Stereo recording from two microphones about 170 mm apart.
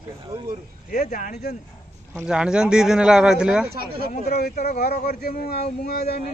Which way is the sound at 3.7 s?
65° right (ahead or behind).